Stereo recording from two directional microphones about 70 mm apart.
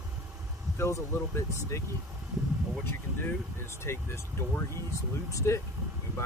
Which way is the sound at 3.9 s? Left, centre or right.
Left.